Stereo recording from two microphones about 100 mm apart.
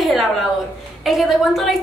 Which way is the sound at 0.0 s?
Centre (ahead or behind).